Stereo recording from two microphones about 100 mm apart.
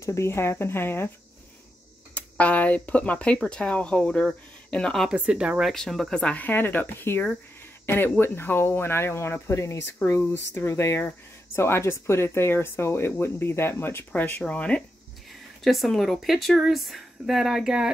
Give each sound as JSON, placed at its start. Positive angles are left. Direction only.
{"t": 0.0, "sound": "speech", "side_deg": 30}
{"t": 2.1, "sound": "speech", "side_deg": 15}
{"t": 5.1, "sound": "speech", "side_deg": -10}
{"t": 5.7, "sound": "speech", "side_deg": 0}
{"t": 15.6, "sound": "speech", "side_deg": 0}